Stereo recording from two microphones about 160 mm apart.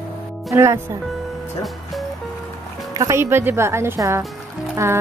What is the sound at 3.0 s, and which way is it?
A woman's voice, 20° right (ahead or behind).